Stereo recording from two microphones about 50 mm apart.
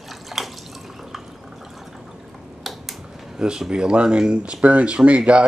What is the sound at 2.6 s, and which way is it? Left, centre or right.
Typing, centre.